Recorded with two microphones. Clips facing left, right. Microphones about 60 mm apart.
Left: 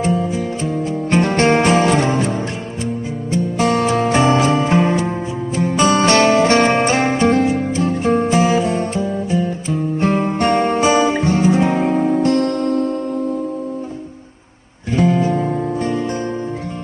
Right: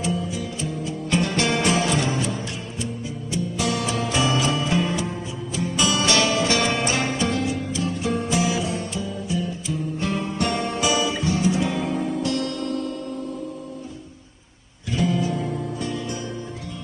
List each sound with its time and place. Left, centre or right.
0.0 s music: left
3.3 s music: left
15.0 s music: left